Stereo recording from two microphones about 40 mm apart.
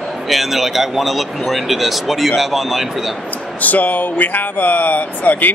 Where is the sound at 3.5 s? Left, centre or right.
Left.